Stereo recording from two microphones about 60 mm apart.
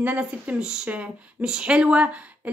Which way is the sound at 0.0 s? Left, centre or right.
Right.